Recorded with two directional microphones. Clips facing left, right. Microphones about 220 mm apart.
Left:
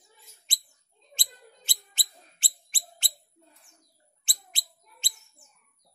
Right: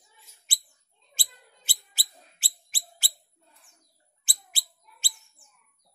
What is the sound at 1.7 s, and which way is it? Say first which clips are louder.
Bird: even; 5° right (ahead or behind).